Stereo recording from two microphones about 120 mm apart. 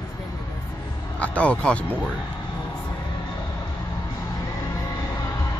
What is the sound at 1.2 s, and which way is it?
Speech, 10° left (ahead or behind).